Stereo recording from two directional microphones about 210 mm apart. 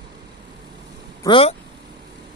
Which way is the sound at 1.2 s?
25° left (ahead or behind).